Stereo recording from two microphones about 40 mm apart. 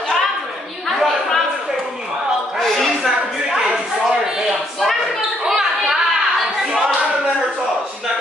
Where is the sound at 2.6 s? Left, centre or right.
Centre.